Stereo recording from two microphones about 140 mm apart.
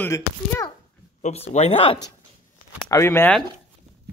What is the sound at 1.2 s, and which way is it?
Speech, 55° left (ahead or behind).